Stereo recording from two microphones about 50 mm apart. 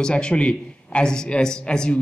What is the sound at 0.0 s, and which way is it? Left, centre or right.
A man's voice, centre.